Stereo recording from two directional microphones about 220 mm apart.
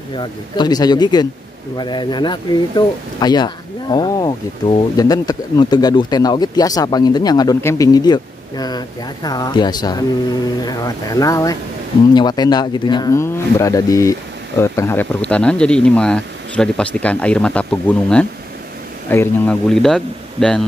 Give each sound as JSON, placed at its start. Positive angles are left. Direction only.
{"t": 0.1, "sound": "speech", "side_deg": 20}